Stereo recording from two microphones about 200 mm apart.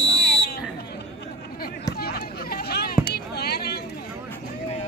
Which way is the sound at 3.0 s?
55° left (ahead or behind).